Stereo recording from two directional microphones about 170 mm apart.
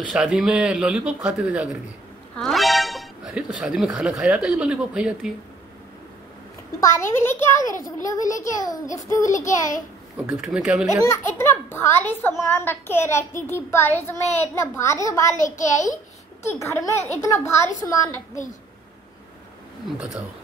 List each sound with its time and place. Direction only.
0.1 s a man's voice: 5° right (ahead or behind)
6.9 s a child's voice: 15° left (ahead or behind)
10.1 s speech: 10° right (ahead or behind)
11.1 s a child's voice: 15° left (ahead or behind)
15.3 s a child's voice: 45° left (ahead or behind)
16.5 s a child's voice: 15° left (ahead or behind)